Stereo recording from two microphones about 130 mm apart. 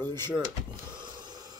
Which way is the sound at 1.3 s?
30° right (ahead or behind).